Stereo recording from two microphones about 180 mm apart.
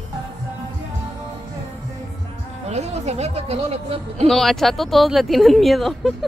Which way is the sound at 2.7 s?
35° right (ahead or behind).